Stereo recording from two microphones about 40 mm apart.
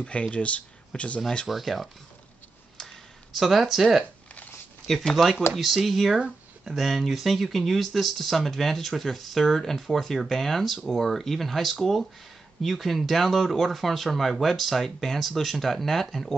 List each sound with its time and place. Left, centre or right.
0.0 s speech: left
1.5 s speech: centre
2.8 s a sound: centre
3.3 s speech: centre
4.9 s speech: centre